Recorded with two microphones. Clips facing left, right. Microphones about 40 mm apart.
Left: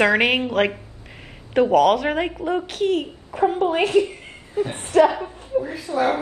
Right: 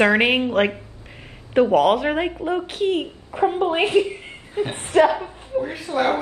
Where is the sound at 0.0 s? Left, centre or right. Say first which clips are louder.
Right 1 dB; centre.